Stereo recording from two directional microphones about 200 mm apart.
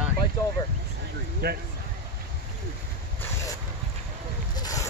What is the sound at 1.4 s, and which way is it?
Speech, 50° right (ahead or behind).